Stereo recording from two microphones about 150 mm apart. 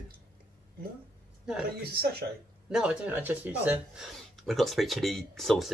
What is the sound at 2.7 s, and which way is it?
Speech, 5° right (ahead or behind).